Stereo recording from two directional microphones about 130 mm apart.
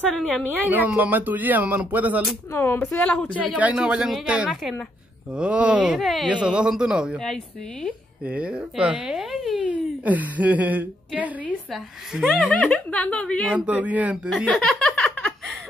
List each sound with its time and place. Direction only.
0.1 s a woman's voice: 5° left (ahead or behind)
0.5 s speech: 15° right (ahead or behind)
2.5 s a woman's voice: 20° left (ahead or behind)
3.5 s speech: 10° right (ahead or behind)
9.7 s speech: 10° right (ahead or behind)
11.7 s a woman's voice: centre (ahead or behind)
13.5 s speech: 5° right (ahead or behind)
14.3 s chuckle: 5° left (ahead or behind)